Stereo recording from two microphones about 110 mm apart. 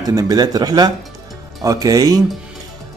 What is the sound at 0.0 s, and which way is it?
Mantra, 35° right (ahead or behind).